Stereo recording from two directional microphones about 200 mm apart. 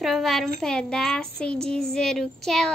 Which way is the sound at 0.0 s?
Centre (ahead or behind).